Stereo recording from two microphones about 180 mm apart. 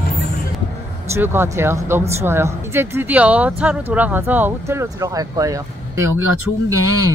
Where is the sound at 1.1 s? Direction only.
15° right (ahead or behind).